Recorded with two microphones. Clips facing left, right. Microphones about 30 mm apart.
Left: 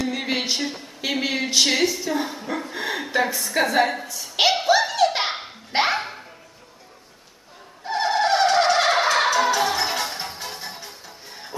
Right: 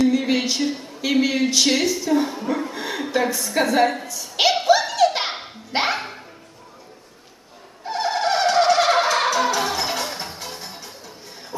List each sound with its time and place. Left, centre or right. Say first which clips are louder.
0.1 s speech: right 4 dB; centre
2.7 s a sound: right 1 dB; centre
7.8 s music: left 1 dB; centre